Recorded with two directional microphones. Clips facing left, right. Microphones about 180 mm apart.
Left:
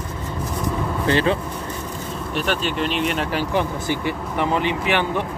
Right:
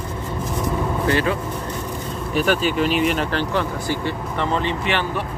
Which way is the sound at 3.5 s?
15° left (ahead or behind).